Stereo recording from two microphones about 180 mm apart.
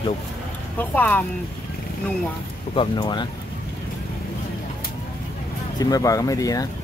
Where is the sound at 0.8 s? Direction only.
10° left (ahead or behind).